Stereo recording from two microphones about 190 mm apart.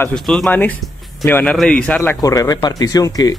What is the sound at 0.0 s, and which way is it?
A man's voice, 5° left (ahead or behind).